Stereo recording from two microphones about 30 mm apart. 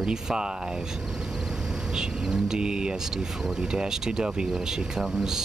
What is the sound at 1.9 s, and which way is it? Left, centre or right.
Speech, right.